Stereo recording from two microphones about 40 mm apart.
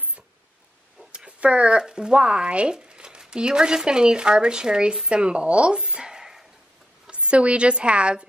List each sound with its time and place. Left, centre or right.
1.1 s speech: right
5.0 s a sound: right
7.1 s a woman's voice: right